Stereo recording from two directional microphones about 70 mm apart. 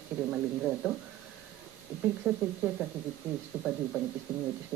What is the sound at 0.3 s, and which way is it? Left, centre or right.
Speech, centre.